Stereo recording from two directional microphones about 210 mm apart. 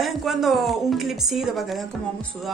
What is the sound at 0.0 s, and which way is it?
A woman's voice, centre (ahead or behind).